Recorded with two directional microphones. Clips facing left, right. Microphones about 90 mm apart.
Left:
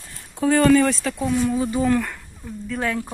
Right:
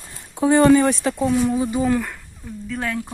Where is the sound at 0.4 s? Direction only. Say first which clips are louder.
Right 2 dB; 20° right (ahead or behind).